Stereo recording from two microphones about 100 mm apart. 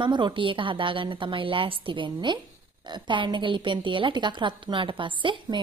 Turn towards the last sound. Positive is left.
turn(degrees=-55)  # may be behind; listen again after turning